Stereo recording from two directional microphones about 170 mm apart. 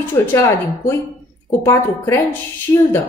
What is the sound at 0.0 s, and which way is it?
A woman's voice, 15° left (ahead or behind).